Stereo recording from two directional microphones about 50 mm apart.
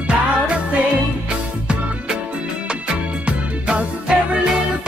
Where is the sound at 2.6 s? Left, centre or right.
Centre.